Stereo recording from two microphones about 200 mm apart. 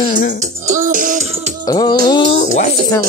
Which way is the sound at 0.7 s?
40° right (ahead or behind).